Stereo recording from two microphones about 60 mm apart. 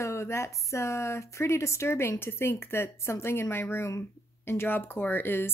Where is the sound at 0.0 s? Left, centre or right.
Left.